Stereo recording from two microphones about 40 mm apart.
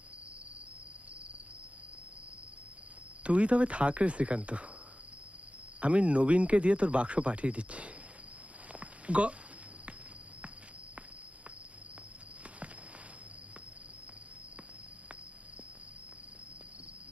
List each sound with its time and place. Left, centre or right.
3.3 s speech: right
5.8 s speech: right
8.7 s a sound: right